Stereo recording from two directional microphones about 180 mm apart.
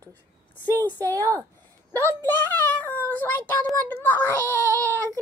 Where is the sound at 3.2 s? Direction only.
10° left (ahead or behind).